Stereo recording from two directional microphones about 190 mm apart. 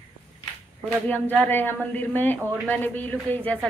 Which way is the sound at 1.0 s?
10° left (ahead or behind).